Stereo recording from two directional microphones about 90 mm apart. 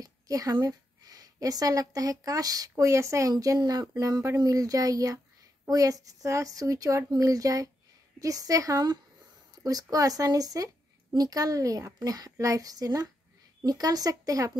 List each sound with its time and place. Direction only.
0.0 s a woman's voice: 45° right (ahead or behind)